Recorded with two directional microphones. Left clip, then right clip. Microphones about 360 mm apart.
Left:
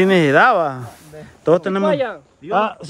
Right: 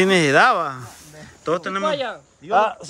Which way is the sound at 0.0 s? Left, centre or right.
Centre.